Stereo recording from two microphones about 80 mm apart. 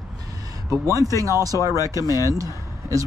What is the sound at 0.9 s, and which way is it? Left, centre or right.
Speech, right.